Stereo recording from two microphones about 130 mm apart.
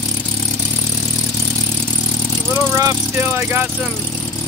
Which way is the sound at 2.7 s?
20° right (ahead or behind).